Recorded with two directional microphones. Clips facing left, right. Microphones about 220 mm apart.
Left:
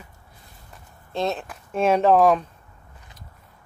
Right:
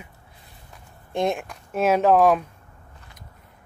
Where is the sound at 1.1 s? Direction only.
15° right (ahead or behind).